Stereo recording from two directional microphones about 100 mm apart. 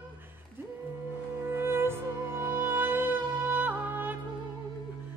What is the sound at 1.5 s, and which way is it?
Music, 25° right (ahead or behind).